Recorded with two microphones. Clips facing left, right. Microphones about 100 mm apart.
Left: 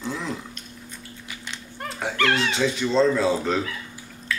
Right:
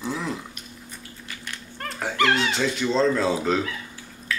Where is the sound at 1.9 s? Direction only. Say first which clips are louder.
Right 1 dB; centre (ahead or behind).